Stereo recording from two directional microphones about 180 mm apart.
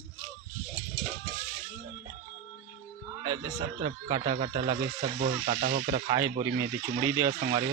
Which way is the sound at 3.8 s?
30° right (ahead or behind).